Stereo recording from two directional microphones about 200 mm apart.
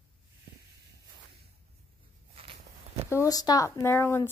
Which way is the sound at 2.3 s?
30° right (ahead or behind).